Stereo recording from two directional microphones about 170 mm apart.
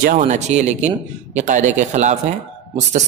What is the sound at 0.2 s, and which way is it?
A man's voice, 40° right (ahead or behind).